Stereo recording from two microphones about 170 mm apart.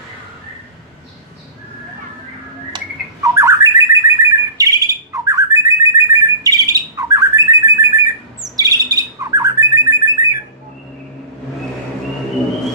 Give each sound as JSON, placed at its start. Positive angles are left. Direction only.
{"t": 2.7, "sound": "bird", "side_deg": -20}